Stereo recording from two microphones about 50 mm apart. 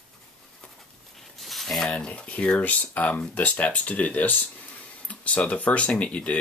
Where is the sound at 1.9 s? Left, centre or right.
Left.